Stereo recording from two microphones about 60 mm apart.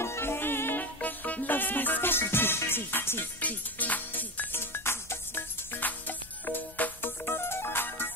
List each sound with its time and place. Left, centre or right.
0.0 s music: left
3.3 s music: left